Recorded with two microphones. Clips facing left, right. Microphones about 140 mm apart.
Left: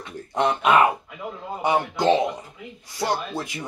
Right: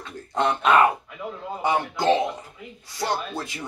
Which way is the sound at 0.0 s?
10° left (ahead or behind).